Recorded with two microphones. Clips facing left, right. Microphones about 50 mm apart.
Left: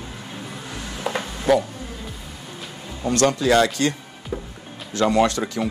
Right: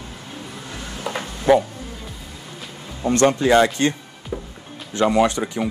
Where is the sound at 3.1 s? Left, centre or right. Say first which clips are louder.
Right 2 dB; right.